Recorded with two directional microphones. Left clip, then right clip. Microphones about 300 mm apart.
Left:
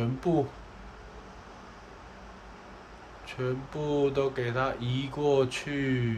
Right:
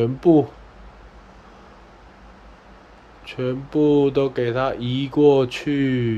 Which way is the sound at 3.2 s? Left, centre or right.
Right.